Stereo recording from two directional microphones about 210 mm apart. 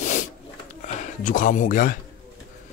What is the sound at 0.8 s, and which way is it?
Speech, 35° left (ahead or behind).